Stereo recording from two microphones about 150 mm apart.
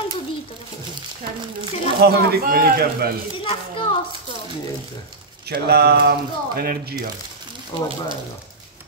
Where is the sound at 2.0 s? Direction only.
90° right.